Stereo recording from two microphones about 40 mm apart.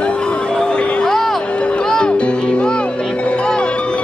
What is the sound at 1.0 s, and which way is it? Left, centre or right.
Music, centre.